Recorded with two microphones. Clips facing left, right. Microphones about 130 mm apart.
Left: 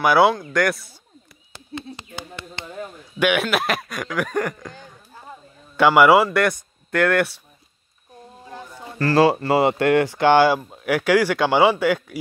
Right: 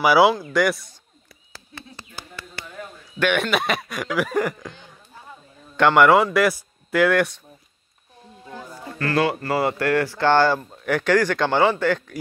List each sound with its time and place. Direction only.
0.0 s speech: centre (ahead or behind)
1.5 s a sound: 15° left (ahead or behind)
3.2 s a man's voice: 5° left (ahead or behind)
8.9 s speech: 30° left (ahead or behind); by 12.2 s 10° left (ahead or behind)